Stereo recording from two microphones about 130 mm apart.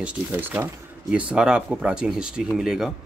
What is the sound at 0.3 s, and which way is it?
Speech, 15° right (ahead or behind).